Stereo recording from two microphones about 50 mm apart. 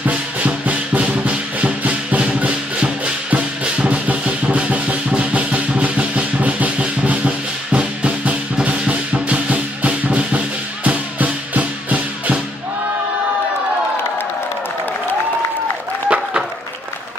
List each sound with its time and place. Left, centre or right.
0.0 s music: right
16.1 s applause: right